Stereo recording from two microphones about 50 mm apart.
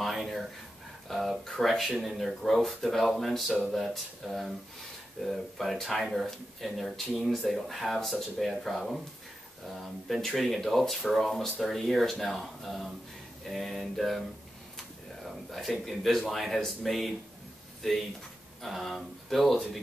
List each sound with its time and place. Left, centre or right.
0.0 s a sound: centre
1.0 s speech: centre
10.2 s speech: centre
18.6 s speech: centre